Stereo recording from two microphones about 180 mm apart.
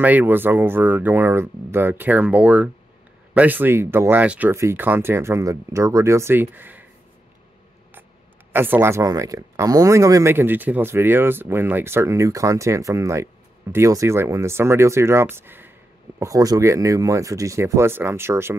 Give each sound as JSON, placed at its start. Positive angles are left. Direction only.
{"t": 0.0, "sound": "speech", "side_deg": -10}
{"t": 8.5, "sound": "speech", "side_deg": -10}